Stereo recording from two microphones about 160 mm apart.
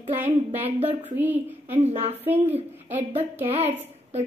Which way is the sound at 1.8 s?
40° right (ahead or behind).